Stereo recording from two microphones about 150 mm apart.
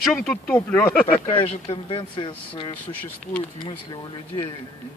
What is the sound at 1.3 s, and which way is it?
Speech, 35° left (ahead or behind).